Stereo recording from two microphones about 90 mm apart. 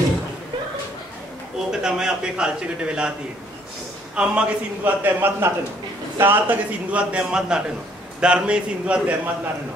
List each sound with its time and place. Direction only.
1.7 s a man's voice: 5° right (ahead or behind)
4.1 s a man's voice: 10° right (ahead or behind)
5.0 s a man's voice: 25° right (ahead or behind)